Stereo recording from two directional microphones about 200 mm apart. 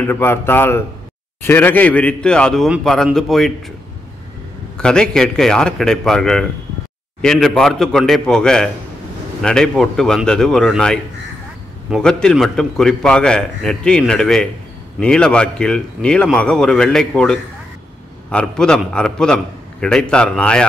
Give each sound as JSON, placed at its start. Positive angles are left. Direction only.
{"t": 0.0, "sound": "a man's voice", "side_deg": 10}
{"t": 4.7, "sound": "a man's voice", "side_deg": 5}